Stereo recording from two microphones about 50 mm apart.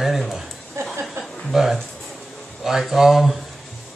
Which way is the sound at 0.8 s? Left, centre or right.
Right.